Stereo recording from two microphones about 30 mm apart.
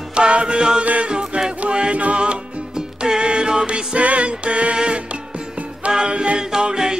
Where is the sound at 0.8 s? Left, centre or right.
Right.